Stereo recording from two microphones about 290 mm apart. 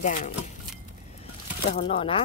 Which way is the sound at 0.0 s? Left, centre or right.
Left.